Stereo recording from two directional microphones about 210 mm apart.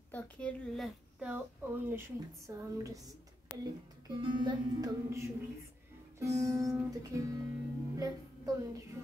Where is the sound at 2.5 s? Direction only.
15° right (ahead or behind).